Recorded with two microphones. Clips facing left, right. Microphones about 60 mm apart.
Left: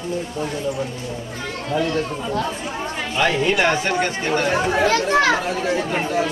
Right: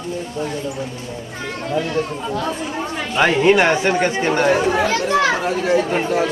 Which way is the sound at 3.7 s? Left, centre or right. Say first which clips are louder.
Right 4 dB; right.